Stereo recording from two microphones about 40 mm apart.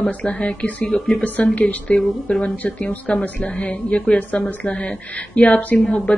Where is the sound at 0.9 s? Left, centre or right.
Centre.